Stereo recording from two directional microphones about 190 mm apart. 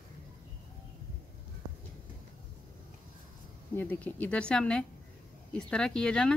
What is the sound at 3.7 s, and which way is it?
Speech, 10° left (ahead or behind).